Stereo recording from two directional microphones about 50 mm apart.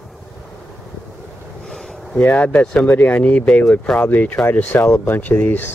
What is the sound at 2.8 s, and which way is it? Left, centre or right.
Speech, left.